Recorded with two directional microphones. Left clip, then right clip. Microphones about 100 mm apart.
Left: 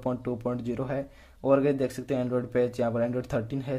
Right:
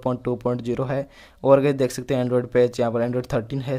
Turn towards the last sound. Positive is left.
turn(degrees=-40)  # may be behind; listen again after turning